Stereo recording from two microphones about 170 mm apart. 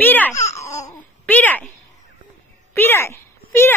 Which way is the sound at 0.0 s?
10° left (ahead or behind).